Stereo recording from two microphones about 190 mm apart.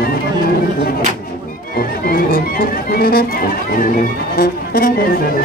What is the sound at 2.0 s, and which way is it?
Music, 50° left (ahead or behind).